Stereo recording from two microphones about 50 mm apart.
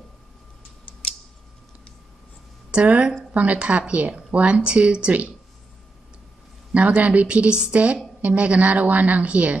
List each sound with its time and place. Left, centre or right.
2.7 s speech: right
6.7 s speech: right